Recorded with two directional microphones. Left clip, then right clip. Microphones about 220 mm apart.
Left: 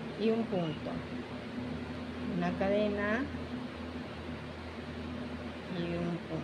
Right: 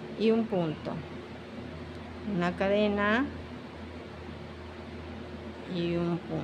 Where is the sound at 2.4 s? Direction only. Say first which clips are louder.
Right 4 dB; 15° right (ahead or behind).